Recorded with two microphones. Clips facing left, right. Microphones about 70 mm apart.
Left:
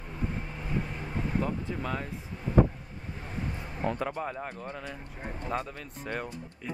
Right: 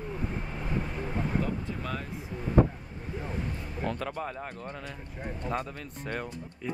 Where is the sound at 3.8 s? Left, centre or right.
Centre.